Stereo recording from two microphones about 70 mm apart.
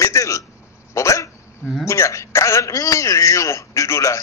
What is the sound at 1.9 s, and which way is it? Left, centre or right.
A man's voice, left.